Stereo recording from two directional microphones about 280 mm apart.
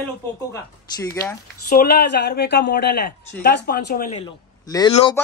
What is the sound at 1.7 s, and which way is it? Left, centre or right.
Speech, left.